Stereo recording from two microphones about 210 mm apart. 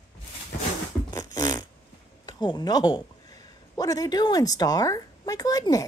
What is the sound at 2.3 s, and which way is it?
A child's voice, 20° left (ahead or behind).